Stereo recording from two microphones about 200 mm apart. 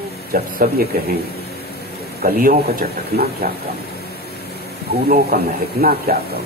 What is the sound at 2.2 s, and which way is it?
Speech, 50° right (ahead or behind).